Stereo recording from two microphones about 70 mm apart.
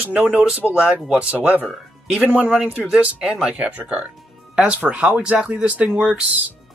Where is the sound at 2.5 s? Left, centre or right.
Centre.